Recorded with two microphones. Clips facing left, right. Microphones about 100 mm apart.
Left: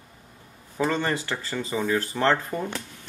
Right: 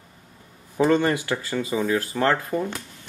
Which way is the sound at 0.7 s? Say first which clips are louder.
Right 6 dB; 15° right (ahead or behind).